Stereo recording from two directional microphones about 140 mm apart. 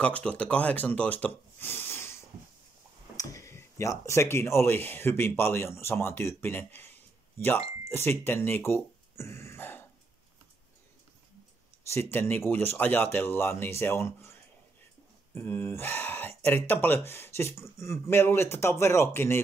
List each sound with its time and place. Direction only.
0.0 s speech: 10° left (ahead or behind)
11.9 s speech: 15° left (ahead or behind)
15.3 s speech: 15° left (ahead or behind)